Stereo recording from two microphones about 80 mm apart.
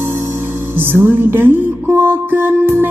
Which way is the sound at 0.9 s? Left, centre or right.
Right.